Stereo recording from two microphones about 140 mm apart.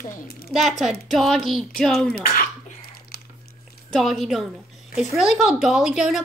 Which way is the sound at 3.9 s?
Centre (ahead or behind).